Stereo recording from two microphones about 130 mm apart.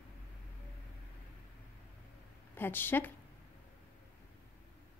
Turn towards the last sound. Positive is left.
turn(degrees=15)  # may be behind; listen again after turning